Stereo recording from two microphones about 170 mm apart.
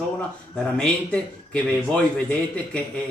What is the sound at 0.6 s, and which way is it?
A man's voice, 5° left (ahead or behind).